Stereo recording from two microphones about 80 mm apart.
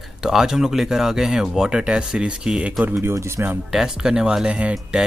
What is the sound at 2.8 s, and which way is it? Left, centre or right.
Speech, right.